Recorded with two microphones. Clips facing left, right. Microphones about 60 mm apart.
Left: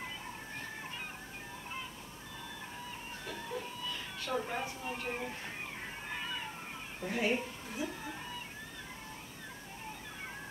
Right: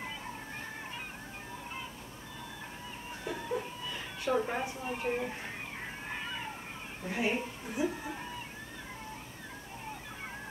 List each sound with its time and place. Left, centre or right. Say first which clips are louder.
3.3 s speech: right 6 dB; centre
7.1 s a woman's voice: right 1 dB; centre